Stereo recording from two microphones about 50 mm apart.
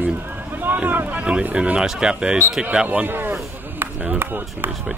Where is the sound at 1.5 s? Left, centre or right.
Centre.